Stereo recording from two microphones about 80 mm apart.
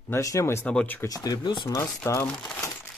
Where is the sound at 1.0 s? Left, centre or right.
Left.